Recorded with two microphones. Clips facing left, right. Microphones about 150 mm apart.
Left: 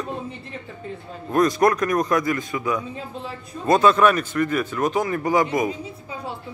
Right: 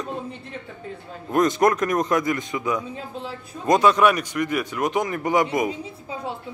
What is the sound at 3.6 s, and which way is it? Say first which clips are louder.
A man's voice: left 1 dB; 15° right (ahead or behind).